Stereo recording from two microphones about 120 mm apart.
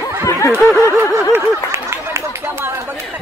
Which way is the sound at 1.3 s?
25° right (ahead or behind).